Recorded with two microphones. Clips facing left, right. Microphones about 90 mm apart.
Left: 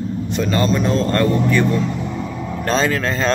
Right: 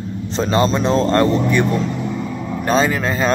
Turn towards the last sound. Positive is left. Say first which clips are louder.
# right 1 dB
turn(degrees=-10)  # may be behind; listen again after turning